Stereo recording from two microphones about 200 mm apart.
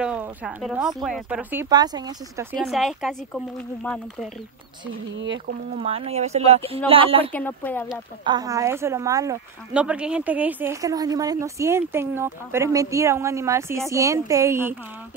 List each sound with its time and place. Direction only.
0.0 s speech: 5° right (ahead or behind)
2.5 s speech: centre (ahead or behind)
5.1 s speech: 65° right (ahead or behind)
5.8 s speech: 30° right (ahead or behind)
7.3 s speech: 10° left (ahead or behind)
8.2 s speech: 20° right (ahead or behind)
9.8 s speech: 5° right (ahead or behind)